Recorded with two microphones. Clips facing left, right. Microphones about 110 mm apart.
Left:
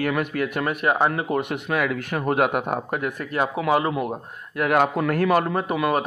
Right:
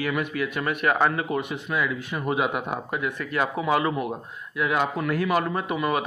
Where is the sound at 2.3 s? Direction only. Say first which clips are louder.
Left 4 dB; 55° left (ahead or behind); by 4.0 s 30° left (ahead or behind).